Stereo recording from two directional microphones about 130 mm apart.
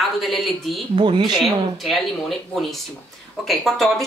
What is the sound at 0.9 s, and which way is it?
Speech, 40° right (ahead or behind).